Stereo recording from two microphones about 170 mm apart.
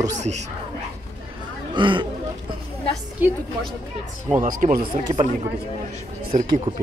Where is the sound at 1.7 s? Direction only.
30° right (ahead or behind).